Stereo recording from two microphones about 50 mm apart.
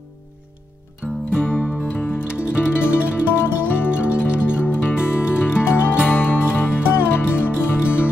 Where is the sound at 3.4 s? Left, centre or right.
Left.